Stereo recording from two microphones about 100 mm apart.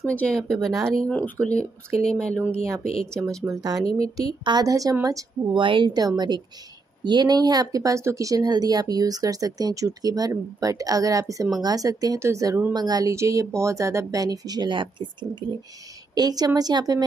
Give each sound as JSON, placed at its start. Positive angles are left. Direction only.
{"t": 0.1, "sound": "speech", "side_deg": 15}
{"t": 0.4, "sound": "a woman's voice", "side_deg": 5}
{"t": 1.0, "sound": "speech", "side_deg": 15}
{"t": 3.6, "sound": "speech", "side_deg": -40}
{"t": 5.5, "sound": "speech", "side_deg": -55}
{"t": 12.7, "sound": "speech", "side_deg": -40}
{"t": 13.1, "sound": "speech", "side_deg": -30}
{"t": 16.2, "sound": "speech", "side_deg": -40}